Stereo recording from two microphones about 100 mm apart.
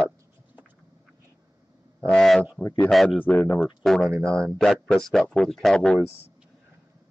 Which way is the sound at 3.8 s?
5° left (ahead or behind).